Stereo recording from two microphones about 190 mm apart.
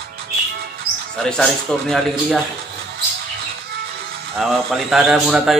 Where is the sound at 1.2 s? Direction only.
5° left (ahead or behind).